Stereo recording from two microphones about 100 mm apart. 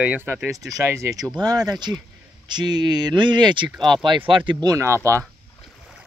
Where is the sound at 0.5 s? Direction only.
35° right (ahead or behind); by 4.5 s 55° right (ahead or behind).